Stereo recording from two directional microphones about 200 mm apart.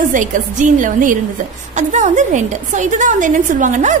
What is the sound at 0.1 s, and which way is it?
A woman's voice, 40° right (ahead or behind).